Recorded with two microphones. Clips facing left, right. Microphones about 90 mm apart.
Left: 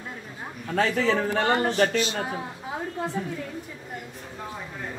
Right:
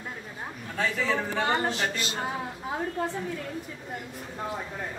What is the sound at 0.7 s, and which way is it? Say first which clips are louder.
Speech: left 5 dB; 75° left (ahead or behind).